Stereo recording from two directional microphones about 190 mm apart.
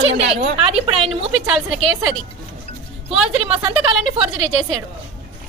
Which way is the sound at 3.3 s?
30° right (ahead or behind).